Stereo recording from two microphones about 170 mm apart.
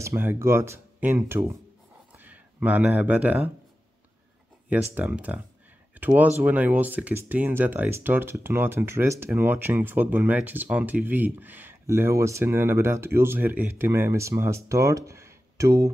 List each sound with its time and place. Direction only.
0.0 s speech: 15° right (ahead or behind)
2.1 s a sound: 10° right (ahead or behind)
4.6 s speech: 10° right (ahead or behind)